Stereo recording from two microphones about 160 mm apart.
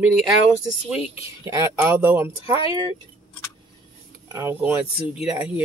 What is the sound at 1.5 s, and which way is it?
Speech, 15° right (ahead or behind).